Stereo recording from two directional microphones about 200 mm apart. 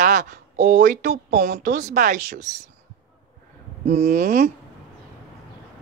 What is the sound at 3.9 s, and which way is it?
Speech, 35° right (ahead or behind).